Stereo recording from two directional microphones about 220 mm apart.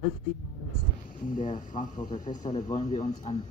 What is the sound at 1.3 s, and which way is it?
Speech, 35° left (ahead or behind).